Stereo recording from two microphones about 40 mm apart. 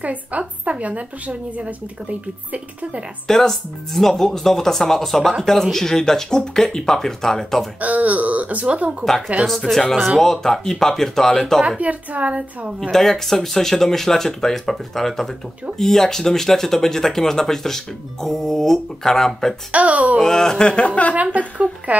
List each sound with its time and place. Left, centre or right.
0.0 s a woman's voice: right
3.3 s speech: centre
7.8 s a woman's voice: right
9.5 s speech: centre
11.8 s a woman's voice: right
12.9 s speech: centre
19.7 s a woman's voice: right
20.2 s speech: centre; by 21.1 s left
21.1 s a woman's voice: right